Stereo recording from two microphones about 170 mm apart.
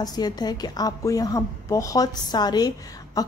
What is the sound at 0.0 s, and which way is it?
Speech, 25° left (ahead or behind).